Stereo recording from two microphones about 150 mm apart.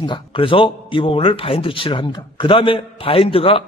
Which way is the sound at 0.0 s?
35° left (ahead or behind).